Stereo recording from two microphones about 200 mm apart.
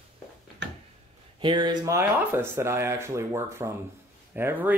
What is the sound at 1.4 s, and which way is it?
Speech, 25° right (ahead or behind).